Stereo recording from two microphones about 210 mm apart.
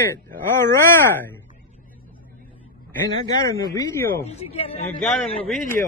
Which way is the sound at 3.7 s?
15° left (ahead or behind).